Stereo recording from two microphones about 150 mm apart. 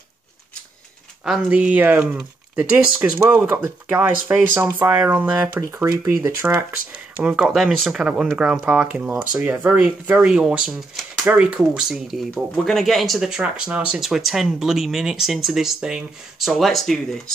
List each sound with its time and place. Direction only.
1.2 s speech: 5° right (ahead or behind)
7.2 s speech: 5° right (ahead or behind)